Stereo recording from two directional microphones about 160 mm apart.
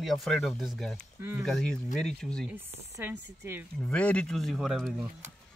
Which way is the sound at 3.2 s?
90° right.